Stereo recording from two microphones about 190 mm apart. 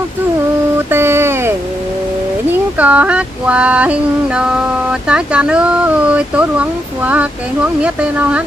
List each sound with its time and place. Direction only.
0.8 s a sound: 10° right (ahead or behind)
2.8 s female singing: 10° right (ahead or behind)
5.0 s speech: 5° right (ahead or behind)
7.8 s female singing: 5° right (ahead or behind)